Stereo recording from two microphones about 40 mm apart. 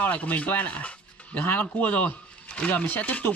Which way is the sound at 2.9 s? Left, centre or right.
Left.